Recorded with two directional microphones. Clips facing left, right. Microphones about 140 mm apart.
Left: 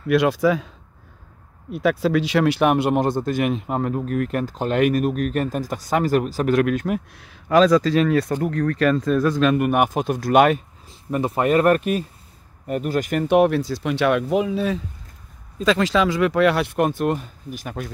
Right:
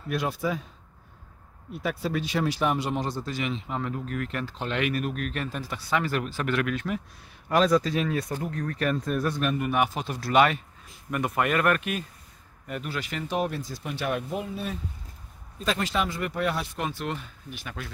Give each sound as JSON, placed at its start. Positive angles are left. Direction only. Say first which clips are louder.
{"t": 0.1, "sound": "speech", "louder": "left 11 dB", "side_deg": 85}
{"t": 1.7, "sound": "speech", "louder": "left 10 dB", "side_deg": 90}
{"t": 7.2, "sound": "speech", "louder": "left 7 dB", "side_deg": 90}
{"t": 10.9, "sound": "speech", "louder": "left 6 dB", "side_deg": 30}